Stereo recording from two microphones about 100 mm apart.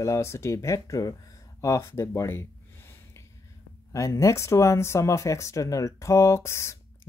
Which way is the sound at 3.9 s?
30° left (ahead or behind).